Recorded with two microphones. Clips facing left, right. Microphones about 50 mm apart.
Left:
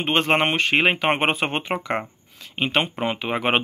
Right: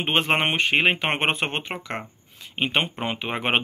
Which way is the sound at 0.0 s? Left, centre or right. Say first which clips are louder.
Left 2 dB; centre.